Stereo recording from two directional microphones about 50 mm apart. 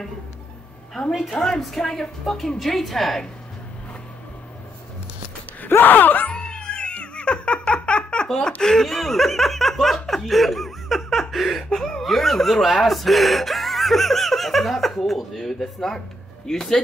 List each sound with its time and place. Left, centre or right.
1.4 s speech: centre
5.7 s speech: left
6.3 s a sound: centre
8.3 s speech: centre